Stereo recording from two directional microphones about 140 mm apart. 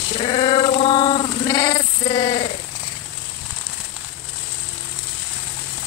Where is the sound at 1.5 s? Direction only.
25° left (ahead or behind).